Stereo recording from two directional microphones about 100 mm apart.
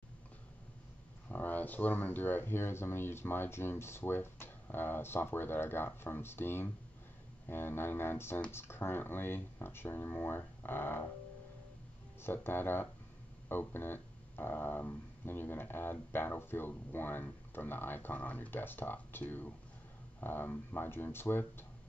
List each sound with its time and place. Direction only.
1.3 s speech: 15° left (ahead or behind)
12.2 s speech: 20° left (ahead or behind)